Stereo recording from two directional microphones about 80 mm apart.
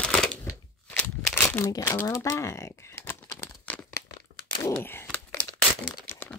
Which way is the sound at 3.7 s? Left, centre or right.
Centre.